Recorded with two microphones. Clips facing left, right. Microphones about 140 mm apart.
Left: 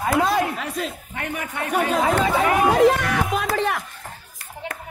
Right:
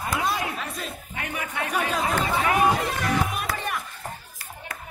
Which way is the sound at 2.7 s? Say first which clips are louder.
Left 8 dB; 90° left.